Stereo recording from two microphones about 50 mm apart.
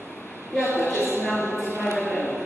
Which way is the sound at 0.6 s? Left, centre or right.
Left.